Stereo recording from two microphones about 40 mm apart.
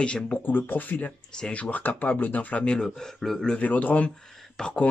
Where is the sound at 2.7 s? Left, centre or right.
Centre.